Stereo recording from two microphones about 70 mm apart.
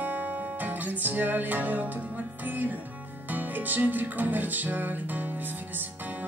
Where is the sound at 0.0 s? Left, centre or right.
Right.